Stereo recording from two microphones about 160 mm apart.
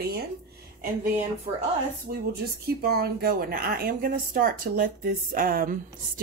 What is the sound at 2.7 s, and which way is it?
Speech, 80° right.